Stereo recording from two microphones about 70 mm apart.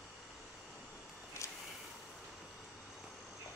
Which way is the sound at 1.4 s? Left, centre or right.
Left.